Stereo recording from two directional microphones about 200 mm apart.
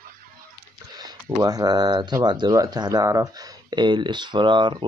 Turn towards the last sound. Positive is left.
turn(degrees=-25)  # may be behind; listen again after turning